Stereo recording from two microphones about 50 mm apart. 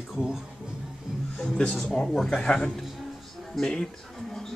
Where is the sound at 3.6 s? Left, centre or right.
Centre.